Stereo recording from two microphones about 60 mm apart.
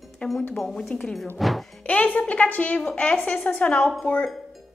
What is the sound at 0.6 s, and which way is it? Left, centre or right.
Speech, centre.